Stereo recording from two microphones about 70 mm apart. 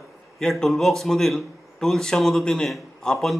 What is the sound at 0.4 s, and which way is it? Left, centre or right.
A man's voice, centre.